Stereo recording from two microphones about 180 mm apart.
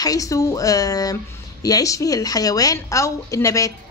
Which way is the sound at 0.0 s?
20° left (ahead or behind).